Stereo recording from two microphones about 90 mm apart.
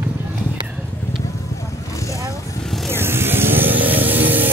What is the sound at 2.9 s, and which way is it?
Vehicle, 25° right (ahead or behind).